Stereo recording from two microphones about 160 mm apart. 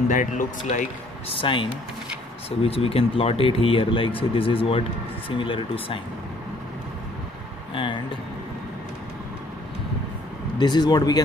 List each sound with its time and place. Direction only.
0.1 s speech: 50° left (ahead or behind)
1.3 s speech: 30° left (ahead or behind)
7.7 s a sound: 30° left (ahead or behind)
10.6 s speech: 25° left (ahead or behind)